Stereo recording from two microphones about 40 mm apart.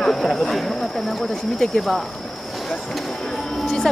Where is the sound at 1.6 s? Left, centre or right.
Centre.